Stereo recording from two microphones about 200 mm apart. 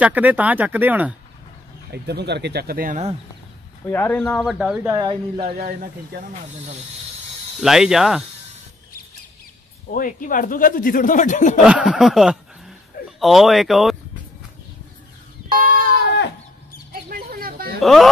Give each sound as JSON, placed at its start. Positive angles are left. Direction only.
{"t": 0.0, "sound": "speech", "side_deg": -10}
{"t": 1.9, "sound": "speech", "side_deg": -55}
{"t": 3.8, "sound": "speech", "side_deg": 10}
{"t": 4.8, "sound": "speech", "side_deg": -20}
{"t": 5.4, "sound": "speech", "side_deg": -50}
{"t": 7.6, "sound": "speech", "side_deg": 0}
{"t": 9.8, "sound": "speech", "side_deg": 40}
{"t": 11.6, "sound": "speech", "side_deg": -5}
{"t": 17.1, "sound": "a sound", "side_deg": -45}
{"t": 17.7, "sound": "speech", "side_deg": 0}